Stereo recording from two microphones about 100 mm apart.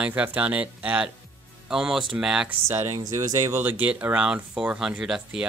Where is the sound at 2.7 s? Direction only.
25° right (ahead or behind).